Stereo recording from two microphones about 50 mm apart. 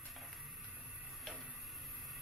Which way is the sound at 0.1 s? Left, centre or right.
Centre.